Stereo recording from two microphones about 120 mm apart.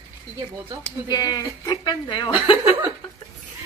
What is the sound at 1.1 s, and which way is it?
Speech, 30° left (ahead or behind).